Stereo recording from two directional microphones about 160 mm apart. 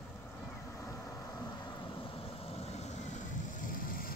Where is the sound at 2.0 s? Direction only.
35° left (ahead or behind).